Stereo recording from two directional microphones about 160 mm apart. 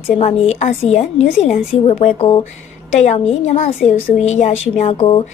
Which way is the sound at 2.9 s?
45° left (ahead or behind).